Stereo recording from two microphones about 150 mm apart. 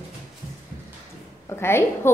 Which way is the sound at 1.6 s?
15° left (ahead or behind).